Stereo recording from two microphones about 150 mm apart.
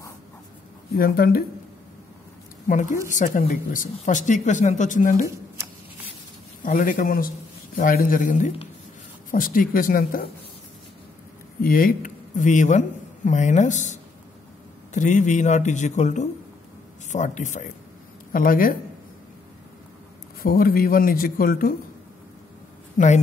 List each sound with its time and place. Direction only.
0.9 s speech: 85° left
2.7 s speech: 60° left (ahead or behind)
6.6 s a man's voice: 60° left (ahead or behind)
11.6 s speech: 70° left (ahead or behind); by 13.9 s 55° left (ahead or behind)
15.0 s speech: 55° left (ahead or behind)
18.3 s a man's voice: 70° left (ahead or behind)
20.4 s a man's voice: 75° left (ahead or behind)
22.9 s a man's voice: 50° left (ahead or behind)